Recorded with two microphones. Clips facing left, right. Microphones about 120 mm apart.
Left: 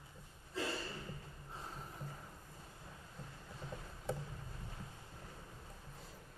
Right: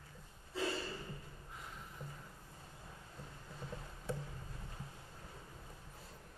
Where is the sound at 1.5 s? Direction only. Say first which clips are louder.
Left 3 dB; 30° left (ahead or behind).